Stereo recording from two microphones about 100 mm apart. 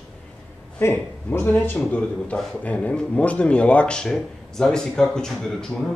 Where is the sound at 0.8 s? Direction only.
20° left (ahead or behind).